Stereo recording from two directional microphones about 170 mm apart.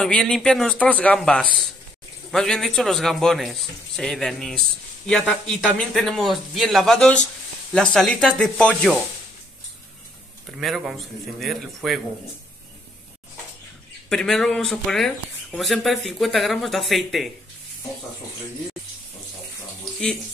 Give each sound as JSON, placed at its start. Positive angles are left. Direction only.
{"t": 0.0, "sound": "speech", "side_deg": 5}
{"t": 10.6, "sound": "speech", "side_deg": 0}
{"t": 14.0, "sound": "speech", "side_deg": 0}
{"t": 19.8, "sound": "water tap", "side_deg": 5}